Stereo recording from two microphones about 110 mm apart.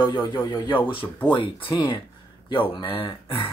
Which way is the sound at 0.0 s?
40° left (ahead or behind).